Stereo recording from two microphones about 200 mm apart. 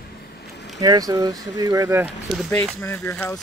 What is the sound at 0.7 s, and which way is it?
Speech, 20° right (ahead or behind).